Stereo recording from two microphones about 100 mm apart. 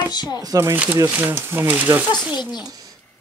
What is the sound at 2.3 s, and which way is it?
Speech, 45° left (ahead or behind).